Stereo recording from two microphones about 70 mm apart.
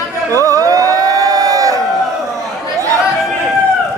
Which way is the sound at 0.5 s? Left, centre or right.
Right.